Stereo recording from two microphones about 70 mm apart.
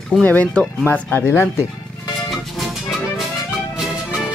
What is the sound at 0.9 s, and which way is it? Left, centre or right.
Speech, left.